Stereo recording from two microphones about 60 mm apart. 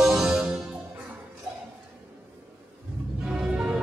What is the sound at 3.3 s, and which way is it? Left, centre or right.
Music, centre.